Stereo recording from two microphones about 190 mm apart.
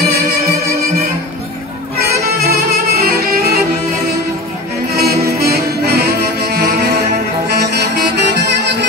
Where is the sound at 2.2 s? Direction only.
55° right (ahead or behind).